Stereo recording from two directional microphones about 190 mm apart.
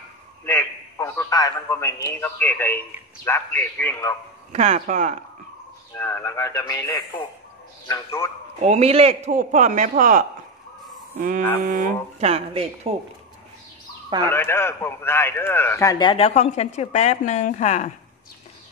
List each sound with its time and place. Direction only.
0.5 s a man's voice: 15° left (ahead or behind)
4.5 s a man's voice: 40° right (ahead or behind)
5.9 s a man's voice: 10° left (ahead or behind)
8.5 s a man's voice: 35° right (ahead or behind)
11.1 s a sound: 45° right (ahead or behind)
11.6 s a man's voice: 40° right (ahead or behind)
14.3 s a man's voice: 15° left (ahead or behind); by 17.9 s 40° left (ahead or behind)